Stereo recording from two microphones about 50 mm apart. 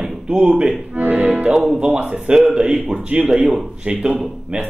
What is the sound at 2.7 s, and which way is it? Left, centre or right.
A man's voice, centre.